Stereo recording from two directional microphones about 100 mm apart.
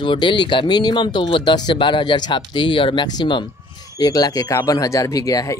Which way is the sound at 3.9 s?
40° left (ahead or behind).